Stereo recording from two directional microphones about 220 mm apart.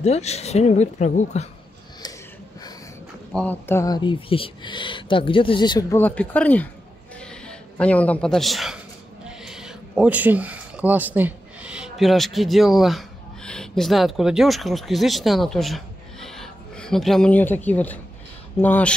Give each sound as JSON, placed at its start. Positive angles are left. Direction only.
{"t": 0.0, "sound": "speech", "side_deg": 30}
{"t": 3.3, "sound": "speech", "side_deg": 10}
{"t": 7.2, "sound": "a sound", "side_deg": 5}
{"t": 9.2, "sound": "speech", "side_deg": 0}